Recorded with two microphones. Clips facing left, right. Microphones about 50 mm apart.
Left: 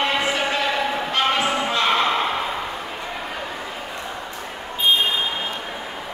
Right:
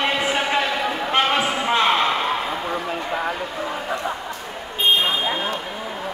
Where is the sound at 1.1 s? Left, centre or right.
Right.